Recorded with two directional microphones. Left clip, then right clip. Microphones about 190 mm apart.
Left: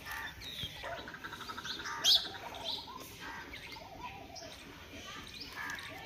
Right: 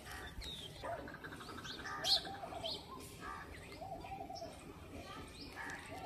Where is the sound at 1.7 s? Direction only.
20° right (ahead or behind).